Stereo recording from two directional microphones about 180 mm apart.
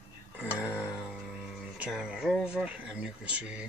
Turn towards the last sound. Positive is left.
turn(degrees=-5)  # may be behind; listen again after turning